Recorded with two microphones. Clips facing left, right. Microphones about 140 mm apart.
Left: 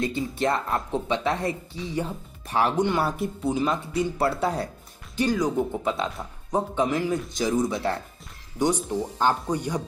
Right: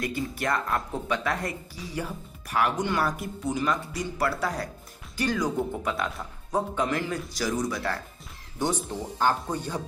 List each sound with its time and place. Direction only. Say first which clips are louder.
0.0 s speech: left 4 dB; 25° left (ahead or behind)